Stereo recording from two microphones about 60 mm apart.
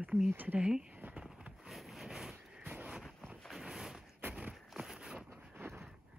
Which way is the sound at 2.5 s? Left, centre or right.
Centre.